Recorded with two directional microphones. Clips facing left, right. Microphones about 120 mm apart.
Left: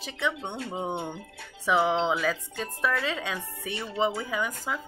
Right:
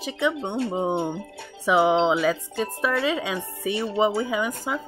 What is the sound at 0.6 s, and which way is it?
Speech, 30° right (ahead or behind).